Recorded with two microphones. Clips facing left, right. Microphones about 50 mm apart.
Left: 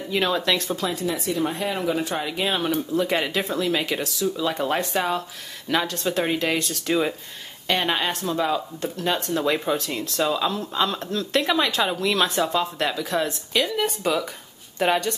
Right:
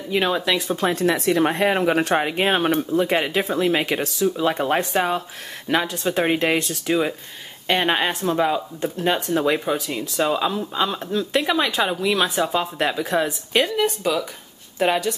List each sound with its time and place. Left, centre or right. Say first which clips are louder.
0.1 s speech: right 2 dB; centre
0.4 s speech: right 1 dB; centre
0.8 s a woman's voice: right 10 dB; right
2.2 s speech: right 5 dB; right
2.9 s speech: right 3 dB; right
6.2 s speech: right 6 dB; right
6.7 s speech: right 2 dB; centre
7.6 s speech: right 3 dB; right
13.7 s speech: right 2 dB; centre